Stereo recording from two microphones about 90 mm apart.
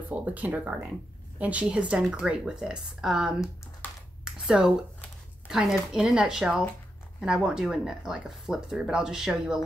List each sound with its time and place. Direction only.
0.1 s speech: 15° right (ahead or behind)
4.2 s a sound: 5° right (ahead or behind)
5.5 s speech: 5° right (ahead or behind)